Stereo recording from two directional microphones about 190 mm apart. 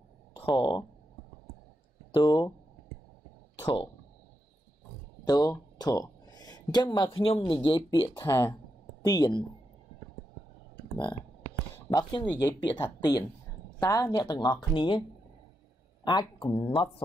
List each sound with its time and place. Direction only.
0.6 s speech: 25° left (ahead or behind)
2.1 s speech: 25° left (ahead or behind)
3.5 s a sound: 25° left (ahead or behind)
5.2 s speech: 20° left (ahead or behind)
11.9 s speech: 20° left (ahead or behind)